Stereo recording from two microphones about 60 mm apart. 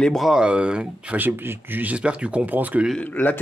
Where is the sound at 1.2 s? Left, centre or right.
Right.